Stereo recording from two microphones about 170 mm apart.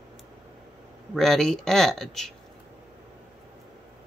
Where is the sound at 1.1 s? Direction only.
Centre (ahead or behind).